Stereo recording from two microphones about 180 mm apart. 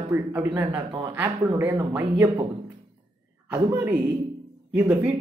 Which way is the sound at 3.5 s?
15° right (ahead or behind).